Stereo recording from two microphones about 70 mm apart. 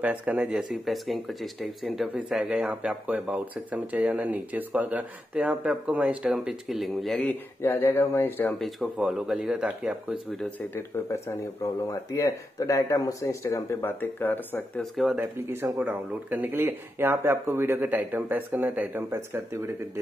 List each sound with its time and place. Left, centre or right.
0.0 s speech: right
0.4 s speech: centre
2.1 s speech: centre
6.3 s speech: centre
7.2 s speech: left
8.5 s speech: centre
11.6 s speech: left
14.2 s speech: left
14.8 s speech: centre
15.1 s speech: right
15.8 s speech: right
19.0 s speech: right